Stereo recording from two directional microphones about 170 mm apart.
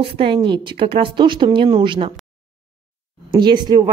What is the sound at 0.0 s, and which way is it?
Speech, 30° right (ahead or behind).